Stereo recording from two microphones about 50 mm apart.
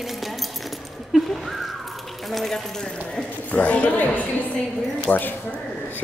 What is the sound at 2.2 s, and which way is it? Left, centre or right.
Speech, centre.